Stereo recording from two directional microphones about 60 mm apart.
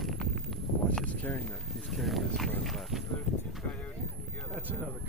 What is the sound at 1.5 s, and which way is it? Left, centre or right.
Speech, centre.